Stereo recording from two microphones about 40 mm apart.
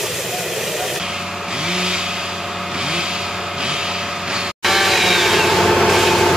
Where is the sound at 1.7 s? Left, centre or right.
Centre.